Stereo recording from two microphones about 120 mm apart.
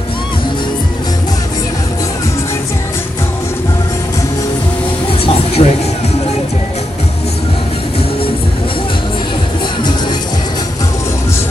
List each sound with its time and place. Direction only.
5.6 s speech: 55° left (ahead or behind)